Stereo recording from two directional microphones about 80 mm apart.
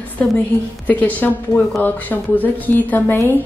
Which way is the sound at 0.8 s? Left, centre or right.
Left.